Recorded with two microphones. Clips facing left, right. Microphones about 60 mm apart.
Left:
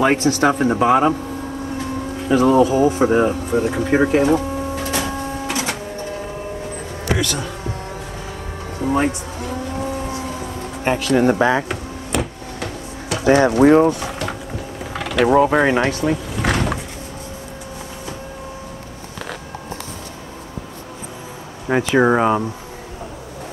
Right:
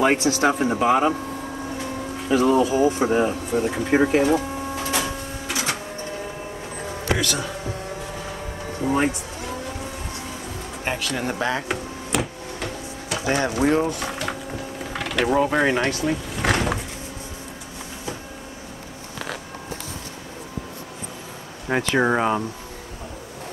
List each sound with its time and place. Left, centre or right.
0.0 s speech: centre
2.1 s speech: centre
4.1 s printer: centre
7.1 s speech: centre
8.7 s speech: centre
10.8 s speech: centre
11.7 s printer: centre
13.8 s a sound: centre
21.6 s speech: centre